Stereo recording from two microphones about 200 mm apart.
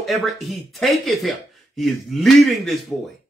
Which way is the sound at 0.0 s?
Centre (ahead or behind).